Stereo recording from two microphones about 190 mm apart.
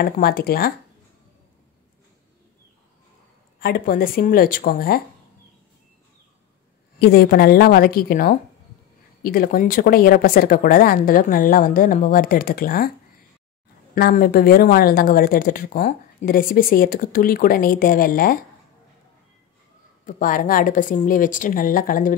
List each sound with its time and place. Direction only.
0.0 s speech: 55° left (ahead or behind)
3.5 s speech: 55° left (ahead or behind)
7.0 s speech: 55° left (ahead or behind)
13.9 s speech: 50° left (ahead or behind)
20.1 s speech: 45° left (ahead or behind)